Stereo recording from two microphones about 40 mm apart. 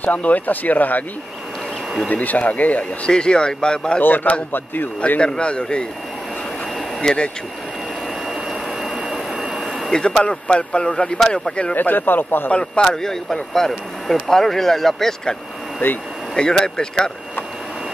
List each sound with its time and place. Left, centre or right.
0.0 s speech: left
2.0 s speech: left
3.1 s a man's voice: left
4.0 s speech: left
5.2 s a man's voice: left
7.0 s speech: centre
8.8 s jet engine: centre
9.9 s a man's voice: left
11.7 s speech: left
12.4 s a man's voice: left
12.8 s speech: centre
15.8 s speech: left
16.3 s a man's voice: centre